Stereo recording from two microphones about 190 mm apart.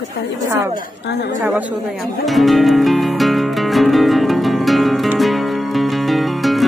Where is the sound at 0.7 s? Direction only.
60° left (ahead or behind).